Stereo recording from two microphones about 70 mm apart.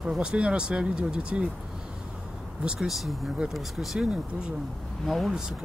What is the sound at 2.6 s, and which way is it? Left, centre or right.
Speech, centre.